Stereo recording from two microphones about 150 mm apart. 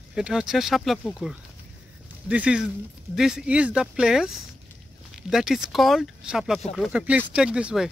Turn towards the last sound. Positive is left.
turn(degrees=-5)  # may be behind; listen again after turning